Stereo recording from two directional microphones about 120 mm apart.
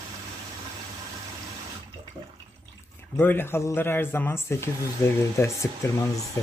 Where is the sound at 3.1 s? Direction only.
15° left (ahead or behind).